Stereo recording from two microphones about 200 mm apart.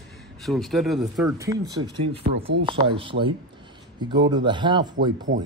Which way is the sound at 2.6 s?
25° right (ahead or behind).